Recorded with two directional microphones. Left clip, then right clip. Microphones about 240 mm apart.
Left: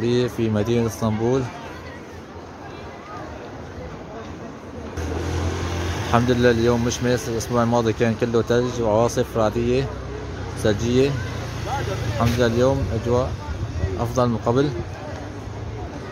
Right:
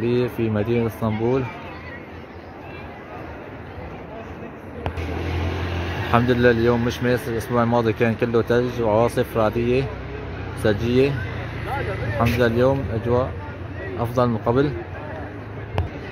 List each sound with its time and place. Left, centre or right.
0.0 s speech: centre
6.0 s speech: centre
12.2 s speech: centre